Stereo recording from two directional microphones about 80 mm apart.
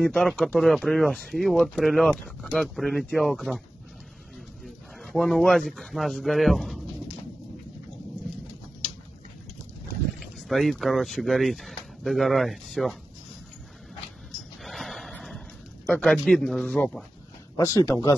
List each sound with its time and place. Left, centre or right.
0.0 s speech: centre
2.0 s speech: centre
2.6 s speech: centre
5.0 s speech: centre
10.5 s speech: centre
14.6 s a sound: centre
16.0 s speech: centre
17.6 s speech: left